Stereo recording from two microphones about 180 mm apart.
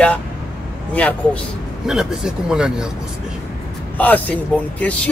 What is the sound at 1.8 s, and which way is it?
Speech, 5° right (ahead or behind).